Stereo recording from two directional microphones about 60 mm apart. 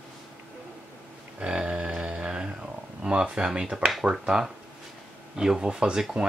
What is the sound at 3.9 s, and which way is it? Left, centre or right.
Speech, centre.